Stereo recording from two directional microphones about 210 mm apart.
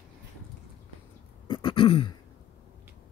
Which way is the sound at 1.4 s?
25° left (ahead or behind).